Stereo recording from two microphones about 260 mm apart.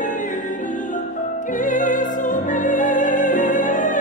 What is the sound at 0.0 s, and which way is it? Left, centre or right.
Music, left.